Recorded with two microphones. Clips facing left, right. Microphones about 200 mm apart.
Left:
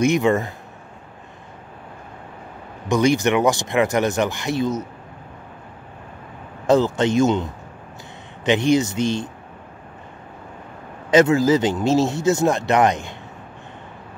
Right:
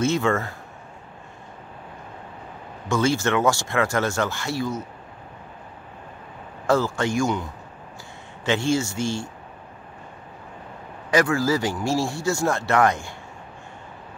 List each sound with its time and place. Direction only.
0.0 s speech: 15° left (ahead or behind)
2.9 s speech: 15° left (ahead or behind)
6.7 s speech: 20° left (ahead or behind)
8.5 s speech: 20° left (ahead or behind)
11.1 s speech: 20° left (ahead or behind)